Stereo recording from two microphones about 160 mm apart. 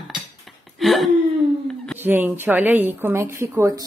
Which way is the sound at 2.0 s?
10° right (ahead or behind).